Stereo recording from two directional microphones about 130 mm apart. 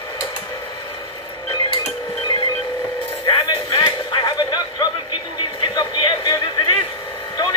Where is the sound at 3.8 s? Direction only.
35° left (ahead or behind).